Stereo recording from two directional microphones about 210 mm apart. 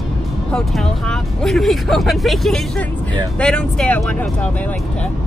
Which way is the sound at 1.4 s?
Centre (ahead or behind).